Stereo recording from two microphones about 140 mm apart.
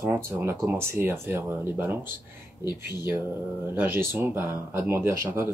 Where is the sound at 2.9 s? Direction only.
30° left (ahead or behind).